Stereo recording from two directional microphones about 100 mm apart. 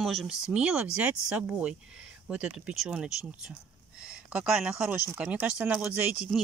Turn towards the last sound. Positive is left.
turn(degrees=-20)  # may be behind; listen again after turning